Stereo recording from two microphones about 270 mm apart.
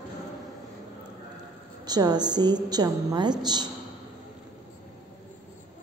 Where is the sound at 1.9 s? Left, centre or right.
Centre.